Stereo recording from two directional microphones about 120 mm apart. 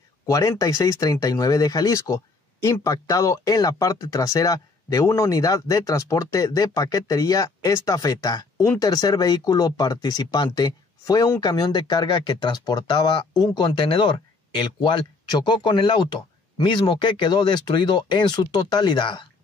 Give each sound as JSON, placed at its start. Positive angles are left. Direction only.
{"t": 0.3, "sound": "speech", "side_deg": 25}